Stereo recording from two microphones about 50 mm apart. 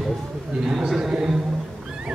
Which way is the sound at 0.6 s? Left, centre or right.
Centre.